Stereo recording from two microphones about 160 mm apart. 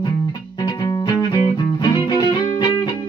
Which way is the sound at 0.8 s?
25° left (ahead or behind).